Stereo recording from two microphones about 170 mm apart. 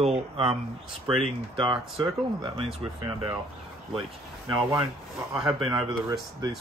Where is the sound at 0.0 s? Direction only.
35° right (ahead or behind).